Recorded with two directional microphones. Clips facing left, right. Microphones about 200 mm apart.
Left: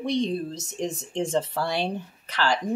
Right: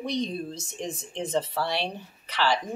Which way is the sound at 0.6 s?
40° left (ahead or behind).